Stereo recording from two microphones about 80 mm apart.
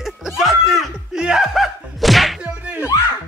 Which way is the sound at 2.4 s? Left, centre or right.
Centre.